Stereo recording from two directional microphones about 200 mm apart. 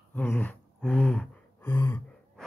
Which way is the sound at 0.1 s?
10° left (ahead or behind).